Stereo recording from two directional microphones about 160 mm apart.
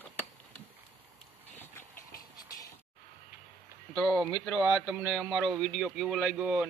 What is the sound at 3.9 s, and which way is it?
Speech, centre (ahead or behind).